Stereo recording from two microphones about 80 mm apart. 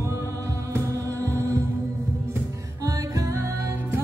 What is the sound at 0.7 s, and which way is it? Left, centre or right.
Music, right.